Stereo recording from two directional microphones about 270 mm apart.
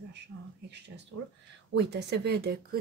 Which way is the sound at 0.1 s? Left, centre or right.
Right.